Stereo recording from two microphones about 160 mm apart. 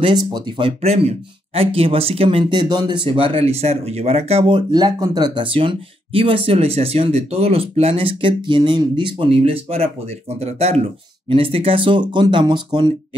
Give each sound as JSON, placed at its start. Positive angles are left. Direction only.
{"t": 0.0, "sound": "speech", "side_deg": -25}